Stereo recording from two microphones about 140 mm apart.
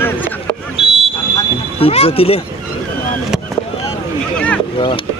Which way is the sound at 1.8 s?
45° left (ahead or behind).